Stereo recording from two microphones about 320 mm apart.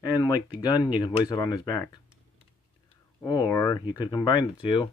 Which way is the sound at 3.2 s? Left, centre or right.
Centre.